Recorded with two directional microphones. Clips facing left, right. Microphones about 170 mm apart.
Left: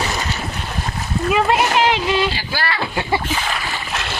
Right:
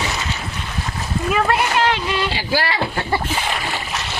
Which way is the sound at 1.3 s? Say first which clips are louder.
Left 2 dB; 20° left (ahead or behind).